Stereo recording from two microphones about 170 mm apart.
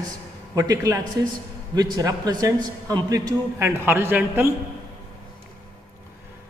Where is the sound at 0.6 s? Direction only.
20° right (ahead or behind).